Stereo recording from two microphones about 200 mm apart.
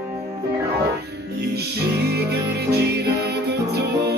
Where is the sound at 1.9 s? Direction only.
55° right (ahead or behind).